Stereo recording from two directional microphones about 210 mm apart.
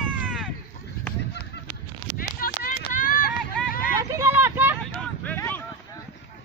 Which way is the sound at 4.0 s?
15° right (ahead or behind).